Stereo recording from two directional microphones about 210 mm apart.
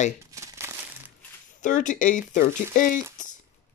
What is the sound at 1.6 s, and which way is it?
Speech, 35° left (ahead or behind).